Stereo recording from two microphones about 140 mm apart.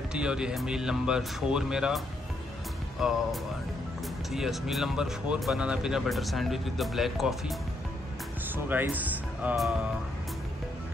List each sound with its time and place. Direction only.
0.1 s speech: 5° right (ahead or behind)
4.3 s speech: centre (ahead or behind)
8.5 s speech: 15° right (ahead or behind)